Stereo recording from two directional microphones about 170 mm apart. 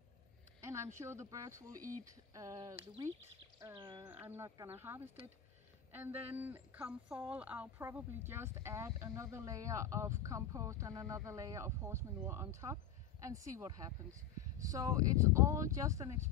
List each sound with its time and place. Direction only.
0.7 s a woman's voice: 15° right (ahead or behind)
4.0 s a woman's voice: 10° right (ahead or behind)